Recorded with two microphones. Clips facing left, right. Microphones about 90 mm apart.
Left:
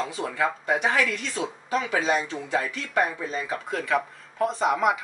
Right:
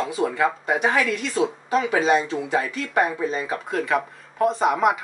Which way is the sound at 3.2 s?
20° right (ahead or behind).